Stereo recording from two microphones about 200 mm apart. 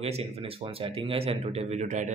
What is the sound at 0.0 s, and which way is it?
A man's voice, 30° right (ahead or behind).